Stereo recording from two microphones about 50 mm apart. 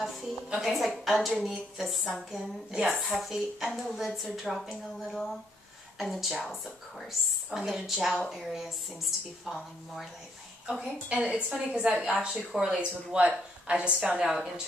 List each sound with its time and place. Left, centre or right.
0.0 s a sound: centre
0.7 s a woman's voice: centre
5.9 s a woman's voice: centre
10.7 s speech: right
12.5 s a woman's voice: centre
13.1 s speech: right
14.2 s a woman's voice: centre